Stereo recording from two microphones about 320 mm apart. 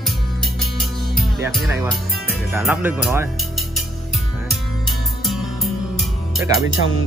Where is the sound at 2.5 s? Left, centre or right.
Centre.